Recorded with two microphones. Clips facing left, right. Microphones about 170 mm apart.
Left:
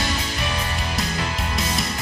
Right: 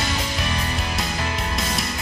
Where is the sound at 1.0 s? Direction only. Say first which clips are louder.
Left 1 dB; centre (ahead or behind).